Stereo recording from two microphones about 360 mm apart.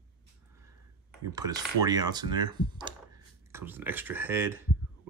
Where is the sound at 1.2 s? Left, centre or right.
Centre.